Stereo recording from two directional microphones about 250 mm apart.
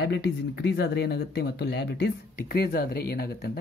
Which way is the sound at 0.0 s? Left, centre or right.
Left.